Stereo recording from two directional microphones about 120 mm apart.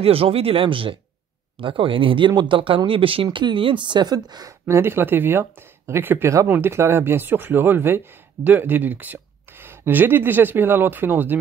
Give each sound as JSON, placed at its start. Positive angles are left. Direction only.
{"t": 0.0, "sound": "speech", "side_deg": -50}